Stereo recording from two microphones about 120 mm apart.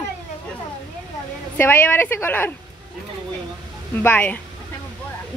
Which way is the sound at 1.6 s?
15° left (ahead or behind).